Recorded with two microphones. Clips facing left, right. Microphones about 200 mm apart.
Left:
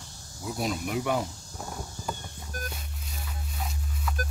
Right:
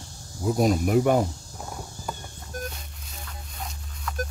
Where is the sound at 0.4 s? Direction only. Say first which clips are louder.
Right 9 dB; 45° right (ahead or behind).